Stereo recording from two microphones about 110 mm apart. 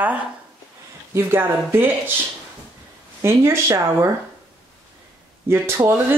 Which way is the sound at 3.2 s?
25° right (ahead or behind).